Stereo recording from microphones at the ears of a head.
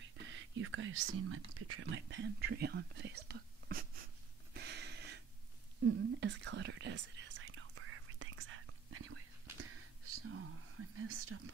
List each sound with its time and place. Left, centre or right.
0.0 s speech: right
4.6 s a sound: right
5.8 s whispering: right